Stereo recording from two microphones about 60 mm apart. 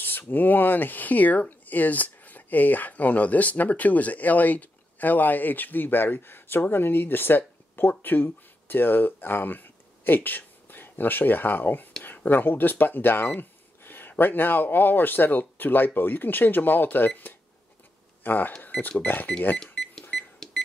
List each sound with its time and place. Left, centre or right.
0.3 s speech: left
18.2 s speech: left
19.6 s cash register: centre